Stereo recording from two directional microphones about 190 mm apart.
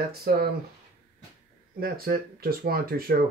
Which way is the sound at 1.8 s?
50° right (ahead or behind).